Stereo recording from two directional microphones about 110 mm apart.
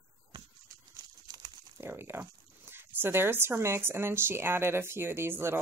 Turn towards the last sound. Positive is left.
turn(degrees=-20)  # may be behind; listen again after turning